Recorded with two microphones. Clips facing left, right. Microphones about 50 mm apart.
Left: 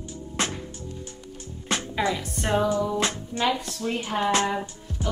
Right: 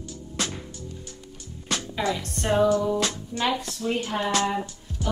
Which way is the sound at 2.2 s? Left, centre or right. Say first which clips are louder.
Right 2 dB; centre.